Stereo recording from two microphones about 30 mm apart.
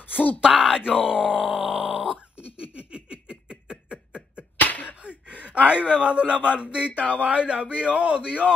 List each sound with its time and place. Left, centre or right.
0.5 s groan: centre
0.9 s speech: right
1.2 s groan: right
1.7 s grunt: centre
2.6 s a sound: right
3.9 s beatboxing: right
4.6 s a sound: left
5.0 s gasp: right
5.7 s speech: right